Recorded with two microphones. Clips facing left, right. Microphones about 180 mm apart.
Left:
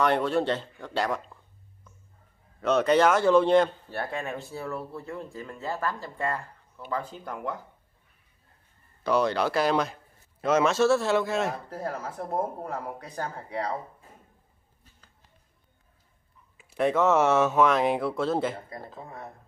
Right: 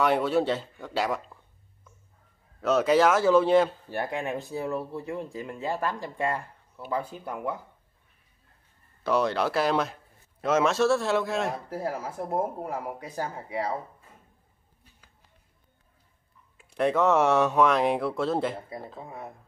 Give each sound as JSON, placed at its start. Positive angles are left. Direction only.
{"t": 0.0, "sound": "speech", "side_deg": -5}
{"t": 2.6, "sound": "speech", "side_deg": 0}
{"t": 4.0, "sound": "a man's voice", "side_deg": -15}
{"t": 9.0, "sound": "a man's voice", "side_deg": 0}
{"t": 16.5, "sound": "speech", "side_deg": 0}
{"t": 19.0, "sound": "a man's voice", "side_deg": -15}